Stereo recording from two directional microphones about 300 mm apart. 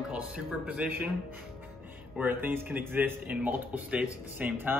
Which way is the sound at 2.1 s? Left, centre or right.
Centre.